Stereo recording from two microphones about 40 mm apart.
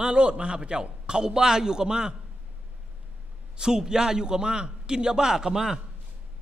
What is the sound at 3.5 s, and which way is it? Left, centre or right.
A man's voice, centre.